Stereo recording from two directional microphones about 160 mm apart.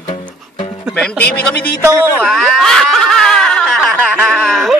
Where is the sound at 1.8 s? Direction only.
15° right (ahead or behind).